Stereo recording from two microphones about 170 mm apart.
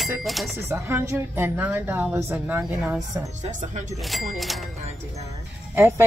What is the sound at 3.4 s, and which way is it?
Speech, 45° right (ahead or behind).